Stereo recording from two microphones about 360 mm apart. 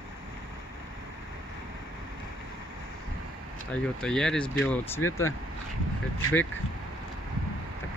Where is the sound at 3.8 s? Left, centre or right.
Centre.